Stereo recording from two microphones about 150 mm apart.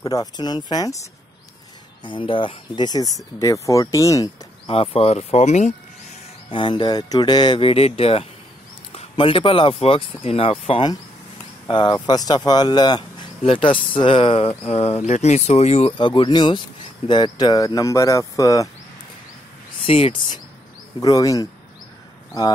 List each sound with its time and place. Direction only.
0.0 s speech: 25° left (ahead or behind)
2.0 s speech: 35° left (ahead or behind)
4.6 s speech: 40° left (ahead or behind)
6.5 s speech: 35° left (ahead or behind)
16.1 s speech: 30° left (ahead or behind)
19.9 s speech: 40° left (ahead or behind)
21.0 s speech: 25° left (ahead or behind)